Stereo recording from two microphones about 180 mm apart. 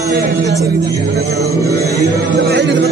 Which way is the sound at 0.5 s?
15° right (ahead or behind).